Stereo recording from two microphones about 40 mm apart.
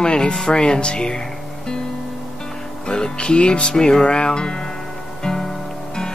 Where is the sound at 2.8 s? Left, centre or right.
Centre.